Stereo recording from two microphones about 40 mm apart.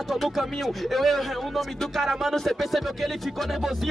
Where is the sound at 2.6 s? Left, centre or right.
Centre.